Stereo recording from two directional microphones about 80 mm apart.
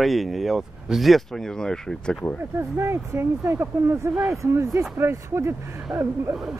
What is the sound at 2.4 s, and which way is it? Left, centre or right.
Speech, right.